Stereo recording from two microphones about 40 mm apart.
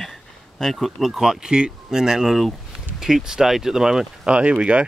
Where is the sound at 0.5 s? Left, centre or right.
Centre.